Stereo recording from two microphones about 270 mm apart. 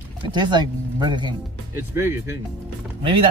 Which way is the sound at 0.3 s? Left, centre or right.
Centre.